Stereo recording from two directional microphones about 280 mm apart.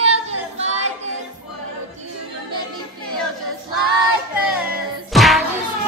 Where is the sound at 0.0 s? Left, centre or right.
Right.